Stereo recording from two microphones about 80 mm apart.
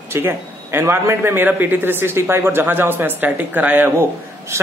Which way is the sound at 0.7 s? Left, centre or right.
Right.